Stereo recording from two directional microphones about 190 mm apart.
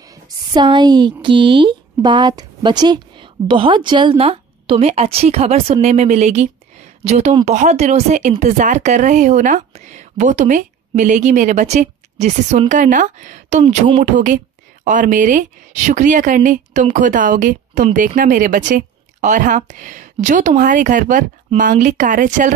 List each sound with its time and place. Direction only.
0.0 s a woman's voice: 20° right (ahead or behind); by 22.5 s 45° right (ahead or behind)